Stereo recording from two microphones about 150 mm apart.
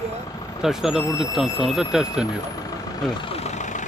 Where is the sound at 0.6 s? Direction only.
5° right (ahead or behind).